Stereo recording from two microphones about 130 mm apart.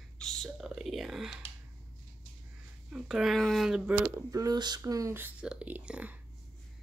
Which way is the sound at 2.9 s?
Centre (ahead or behind).